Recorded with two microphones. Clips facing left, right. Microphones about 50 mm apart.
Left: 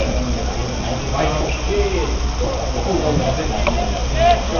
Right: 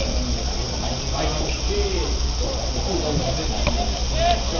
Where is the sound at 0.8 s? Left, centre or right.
Left.